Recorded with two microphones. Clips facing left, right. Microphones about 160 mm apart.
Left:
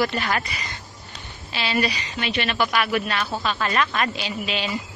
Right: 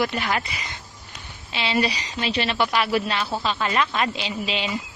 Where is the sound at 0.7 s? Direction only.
20° right (ahead or behind).